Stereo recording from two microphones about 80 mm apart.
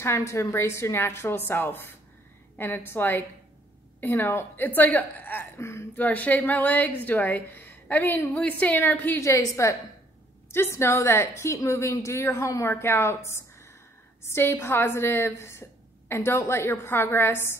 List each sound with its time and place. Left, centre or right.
0.0 s a woman's voice: left
6.0 s a woman's voice: centre
9.2 s a woman's voice: left